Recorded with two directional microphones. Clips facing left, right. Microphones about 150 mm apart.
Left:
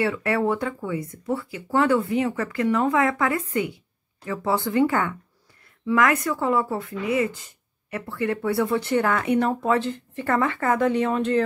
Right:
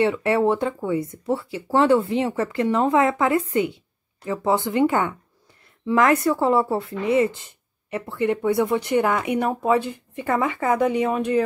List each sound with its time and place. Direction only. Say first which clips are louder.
0.0 s speech: right 4 dB; 20° right (ahead or behind)